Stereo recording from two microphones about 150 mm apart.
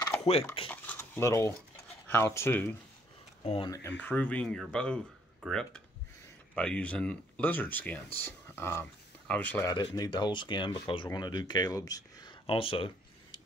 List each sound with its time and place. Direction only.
0.7 s a sound: 15° left (ahead or behind)
2.0 s speech: 15° left (ahead or behind)
3.4 s speech: 35° left (ahead or behind)
3.7 s speech: 15° left (ahead or behind)
9.7 s speech: 25° left (ahead or behind)